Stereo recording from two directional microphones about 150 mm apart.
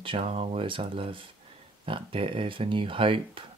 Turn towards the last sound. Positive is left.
turn(degrees=-35)  # may be behind; listen again after turning